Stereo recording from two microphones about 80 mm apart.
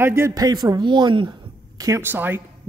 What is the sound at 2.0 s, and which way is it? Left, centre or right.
Speech, right.